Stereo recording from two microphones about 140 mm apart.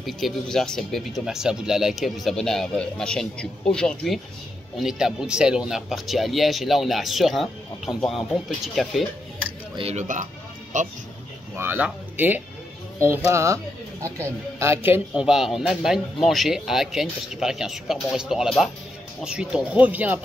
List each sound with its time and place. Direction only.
0.0 s speech: centre (ahead or behind)
9.8 s speech: 45° right (ahead or behind)
10.7 s speech: 65° right (ahead or behind)
11.5 s speech: 15° right (ahead or behind)
15.2 s speech: centre (ahead or behind)